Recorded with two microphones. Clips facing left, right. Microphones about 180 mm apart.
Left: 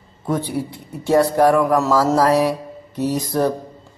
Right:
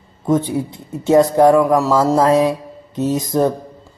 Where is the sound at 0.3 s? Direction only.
20° right (ahead or behind).